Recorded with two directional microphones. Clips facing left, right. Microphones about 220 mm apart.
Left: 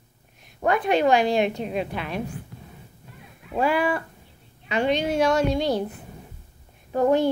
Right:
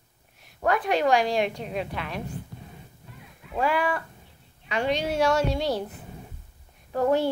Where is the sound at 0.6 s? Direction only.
10° left (ahead or behind).